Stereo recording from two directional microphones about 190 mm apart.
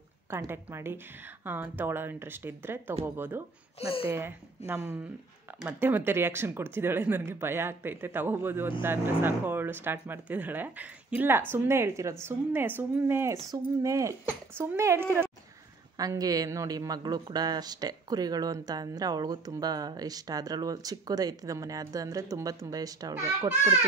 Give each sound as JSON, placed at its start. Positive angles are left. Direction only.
{"t": 0.3, "sound": "speech", "side_deg": -10}
{"t": 3.8, "sound": "speech", "side_deg": 30}
{"t": 4.1, "sound": "speech", "side_deg": -10}